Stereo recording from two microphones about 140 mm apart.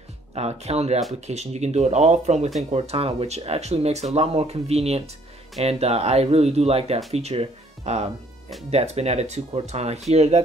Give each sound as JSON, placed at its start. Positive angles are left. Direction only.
{"t": 0.3, "sound": "speech", "side_deg": -50}